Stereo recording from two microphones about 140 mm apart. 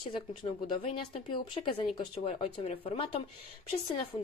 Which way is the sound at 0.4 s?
40° left (ahead or behind).